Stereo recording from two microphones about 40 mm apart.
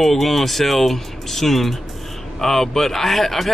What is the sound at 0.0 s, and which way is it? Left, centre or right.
Speech, centre.